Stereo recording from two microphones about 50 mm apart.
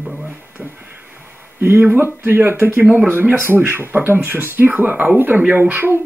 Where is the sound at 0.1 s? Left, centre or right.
Right.